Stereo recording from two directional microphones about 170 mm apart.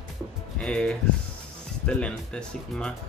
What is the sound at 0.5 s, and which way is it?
Speech, 5° left (ahead or behind).